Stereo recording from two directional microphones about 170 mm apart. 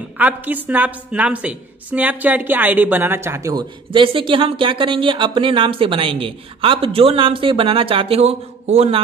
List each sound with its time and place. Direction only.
0.2 s a woman's voice: 10° right (ahead or behind); by 9.0 s 40° right (ahead or behind)